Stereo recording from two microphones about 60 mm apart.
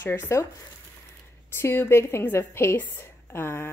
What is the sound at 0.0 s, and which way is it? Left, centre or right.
Speech, left.